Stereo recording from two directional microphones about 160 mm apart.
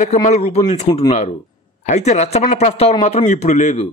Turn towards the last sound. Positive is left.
turn(degrees=45)  # may be behind; listen again after turning